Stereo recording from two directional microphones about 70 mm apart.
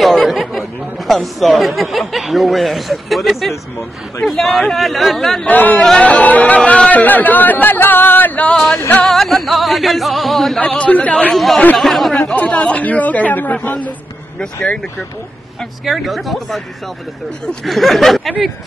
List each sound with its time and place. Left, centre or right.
0.0 s speech: centre
4.2 s music: centre
5.4 s speech: left
8.5 s music: centre
8.7 s music: left
9.0 s music: centre
10.6 s speech: centre
11.3 s music: centre
12.3 s speech: centre
14.4 s speech: centre
15.8 s music: centre
17.6 s music: centre